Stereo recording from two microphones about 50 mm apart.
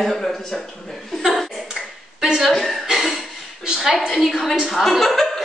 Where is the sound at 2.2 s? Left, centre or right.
Centre.